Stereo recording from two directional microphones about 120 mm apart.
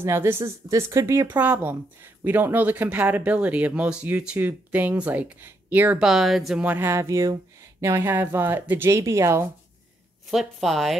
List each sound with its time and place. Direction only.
0.0 s speech: 20° right (ahead or behind)
6.0 s speech: centre (ahead or behind); by 9.5 s 20° right (ahead or behind)
10.3 s speech: centre (ahead or behind)